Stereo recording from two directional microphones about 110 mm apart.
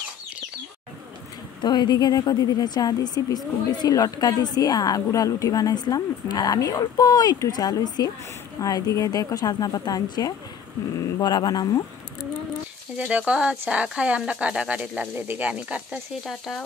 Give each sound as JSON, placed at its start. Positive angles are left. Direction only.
{"t": 1.6, "sound": "a woman's voice", "side_deg": 40}
{"t": 12.9, "sound": "speech", "side_deg": -10}
{"t": 16.3, "sound": "speech", "side_deg": 0}